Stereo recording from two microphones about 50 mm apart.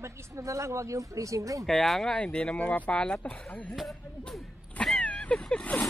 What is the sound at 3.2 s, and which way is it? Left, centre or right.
Speech, left.